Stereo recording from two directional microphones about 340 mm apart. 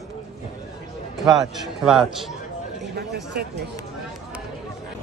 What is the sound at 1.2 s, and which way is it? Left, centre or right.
Speech, centre.